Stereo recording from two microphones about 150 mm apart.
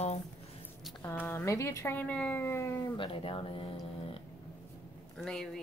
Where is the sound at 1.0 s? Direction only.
15° left (ahead or behind).